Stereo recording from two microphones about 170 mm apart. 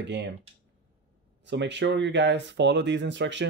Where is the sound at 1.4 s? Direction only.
90° right.